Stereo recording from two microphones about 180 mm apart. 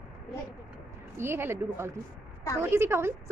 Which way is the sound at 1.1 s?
15° right (ahead or behind).